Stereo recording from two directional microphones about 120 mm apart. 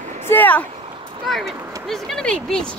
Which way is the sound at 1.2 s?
Centre (ahead or behind).